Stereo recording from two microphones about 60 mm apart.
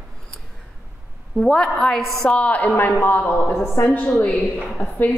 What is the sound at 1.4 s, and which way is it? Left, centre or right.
Speech, centre.